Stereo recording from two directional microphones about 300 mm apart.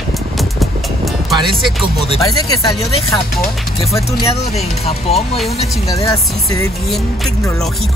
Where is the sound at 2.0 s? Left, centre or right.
Centre.